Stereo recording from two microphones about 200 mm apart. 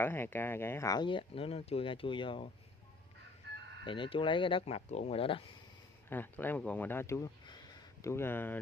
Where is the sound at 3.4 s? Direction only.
55° right (ahead or behind).